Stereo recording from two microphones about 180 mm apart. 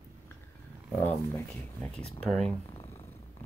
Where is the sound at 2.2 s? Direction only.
Centre (ahead or behind).